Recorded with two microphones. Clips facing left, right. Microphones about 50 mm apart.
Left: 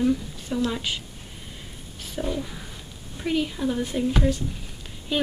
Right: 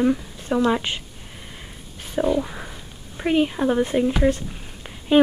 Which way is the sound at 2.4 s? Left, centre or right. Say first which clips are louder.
Right 7 dB; right.